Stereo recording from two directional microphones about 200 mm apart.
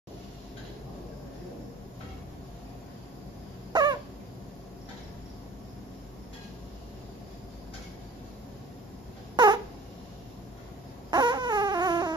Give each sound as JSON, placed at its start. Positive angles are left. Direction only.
{"t": 3.7, "sound": "bird", "side_deg": -20}
{"t": 9.4, "sound": "a sound", "side_deg": -20}
{"t": 11.1, "sound": "baby cry", "side_deg": -20}